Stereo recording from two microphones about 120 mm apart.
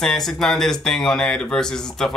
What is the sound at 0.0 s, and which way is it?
Speech, 5° left (ahead or behind).